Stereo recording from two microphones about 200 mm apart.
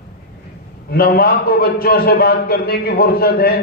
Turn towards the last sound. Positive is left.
turn(degrees=50)  # may be behind; listen again after turning